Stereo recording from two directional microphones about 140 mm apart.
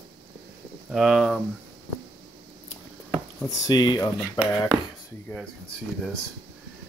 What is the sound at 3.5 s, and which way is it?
Speech, 30° left (ahead or behind).